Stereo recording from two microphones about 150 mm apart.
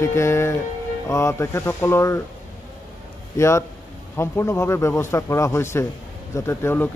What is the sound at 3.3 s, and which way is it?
A man's voice, 20° left (ahead or behind).